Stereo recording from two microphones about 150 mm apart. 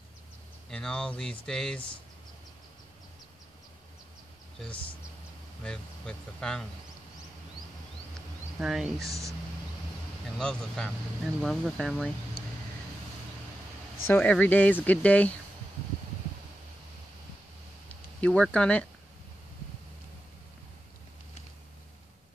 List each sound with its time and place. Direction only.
0.7 s speech: 5° left (ahead or behind)
5.6 s speech: 5° left (ahead or behind)
8.5 s speech: 5° right (ahead or behind)
9.0 s speech: 20° right (ahead or behind)
10.3 s speech: 5° left (ahead or behind)
14.0 s speech: 10° left (ahead or behind)
18.2 s speech: 5° left (ahead or behind)